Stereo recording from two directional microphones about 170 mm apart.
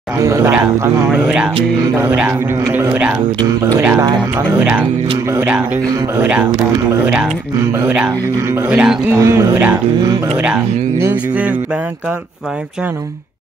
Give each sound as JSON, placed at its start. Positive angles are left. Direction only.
{"t": 0.2, "sound": "speech", "side_deg": -15}
{"t": 7.7, "sound": "speech", "side_deg": -10}